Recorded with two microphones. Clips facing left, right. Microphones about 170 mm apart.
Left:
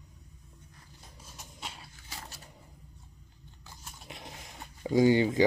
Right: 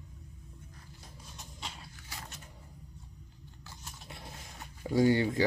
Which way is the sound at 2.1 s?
35° left (ahead or behind).